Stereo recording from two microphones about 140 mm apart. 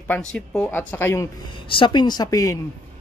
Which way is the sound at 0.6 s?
15° left (ahead or behind).